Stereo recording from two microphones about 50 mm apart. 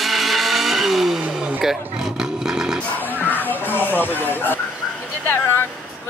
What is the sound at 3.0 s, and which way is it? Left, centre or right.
Music, left.